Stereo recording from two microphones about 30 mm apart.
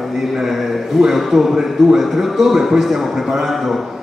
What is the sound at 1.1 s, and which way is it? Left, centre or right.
A man's voice, centre.